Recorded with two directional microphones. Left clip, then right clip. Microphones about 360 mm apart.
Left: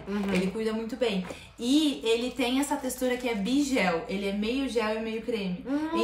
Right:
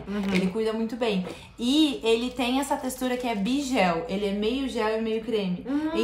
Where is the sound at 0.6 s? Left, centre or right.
Centre.